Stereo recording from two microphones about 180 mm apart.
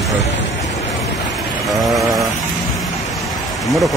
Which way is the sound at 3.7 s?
Centre (ahead or behind).